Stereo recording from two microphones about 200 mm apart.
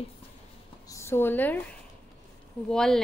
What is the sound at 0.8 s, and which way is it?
Speech, 15° left (ahead or behind).